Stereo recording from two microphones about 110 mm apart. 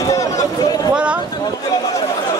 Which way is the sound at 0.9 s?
10° right (ahead or behind).